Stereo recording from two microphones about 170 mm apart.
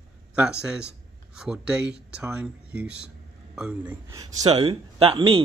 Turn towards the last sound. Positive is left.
turn(degrees=-30)  # may be behind; listen again after turning